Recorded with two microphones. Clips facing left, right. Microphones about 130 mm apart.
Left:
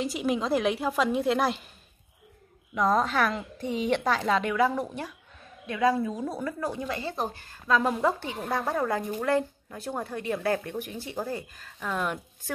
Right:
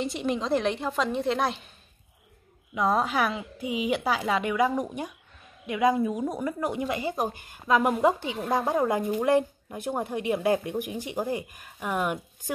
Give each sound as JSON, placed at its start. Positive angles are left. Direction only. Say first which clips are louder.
{"t": 0.0, "sound": "a woman's voice", "louder": "left 1 dB", "side_deg": 0}
{"t": 2.7, "sound": "speech", "louder": "even", "side_deg": -5}